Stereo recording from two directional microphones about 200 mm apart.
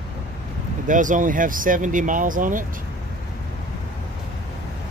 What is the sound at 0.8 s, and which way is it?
Speech, 40° right (ahead or behind).